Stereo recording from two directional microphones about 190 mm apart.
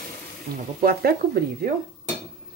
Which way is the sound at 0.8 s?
50° right (ahead or behind).